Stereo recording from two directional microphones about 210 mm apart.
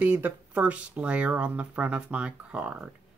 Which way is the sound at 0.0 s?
5° right (ahead or behind).